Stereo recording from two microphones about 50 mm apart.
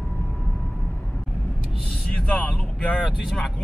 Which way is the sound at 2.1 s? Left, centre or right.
Left.